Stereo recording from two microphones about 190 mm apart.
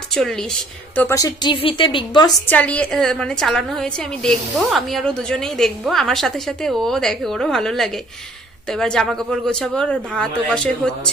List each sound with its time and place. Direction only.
0.1 s a woman's voice: 5° left (ahead or behind); by 2.3 s 25° left (ahead or behind)
2.5 s a woman's voice: 5° left (ahead or behind)